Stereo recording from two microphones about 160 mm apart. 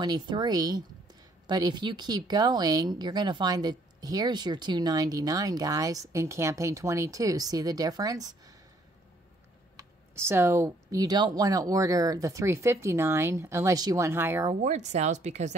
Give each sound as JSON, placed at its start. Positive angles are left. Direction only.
{"t": 0.0, "sound": "speech", "side_deg": -25}
{"t": 9.8, "sound": "speech", "side_deg": -15}
{"t": 14.5, "sound": "speech", "side_deg": -45}